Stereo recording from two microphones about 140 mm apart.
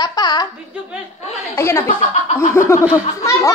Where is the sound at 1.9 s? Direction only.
50° left (ahead or behind).